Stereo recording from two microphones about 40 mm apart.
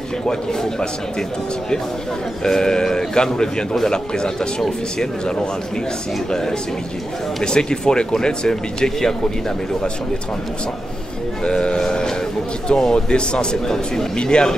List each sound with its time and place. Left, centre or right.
0.3 s speech: centre
2.4 s speech: centre
7.4 s speech: centre
11.4 s speech: left
11.8 s a sound: centre
12.6 s speech: centre